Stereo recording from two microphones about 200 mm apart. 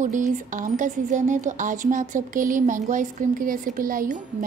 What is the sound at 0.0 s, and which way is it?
Speech, 40° right (ahead or behind).